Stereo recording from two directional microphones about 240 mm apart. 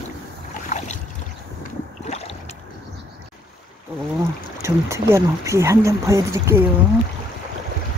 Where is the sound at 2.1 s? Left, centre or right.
Left.